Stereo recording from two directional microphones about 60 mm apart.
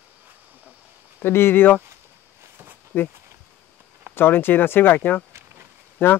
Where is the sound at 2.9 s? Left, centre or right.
Left.